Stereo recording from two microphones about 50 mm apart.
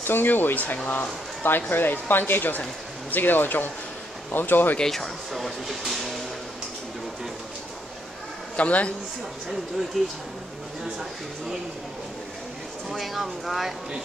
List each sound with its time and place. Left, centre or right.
0.0 s speech: left
4.7 s speech: centre
8.5 s a man's voice: left
9.9 s speech: centre
12.9 s speech: centre